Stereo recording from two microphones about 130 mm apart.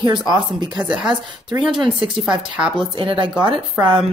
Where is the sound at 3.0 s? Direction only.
40° right (ahead or behind).